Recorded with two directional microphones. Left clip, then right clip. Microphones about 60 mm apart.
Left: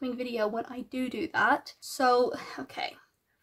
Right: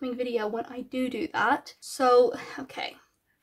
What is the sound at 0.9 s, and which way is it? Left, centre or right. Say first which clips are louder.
Speech: right 3 dB; centre.